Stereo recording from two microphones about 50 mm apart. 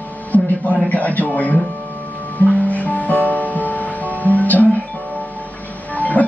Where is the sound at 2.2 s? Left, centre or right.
Left.